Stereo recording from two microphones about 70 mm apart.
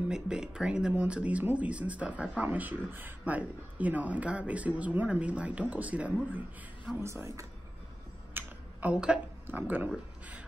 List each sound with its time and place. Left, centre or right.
0.1 s speech: centre
7.0 s a woman's voice: right
8.4 s a sound: right
8.9 s a woman's voice: centre
9.5 s speech: right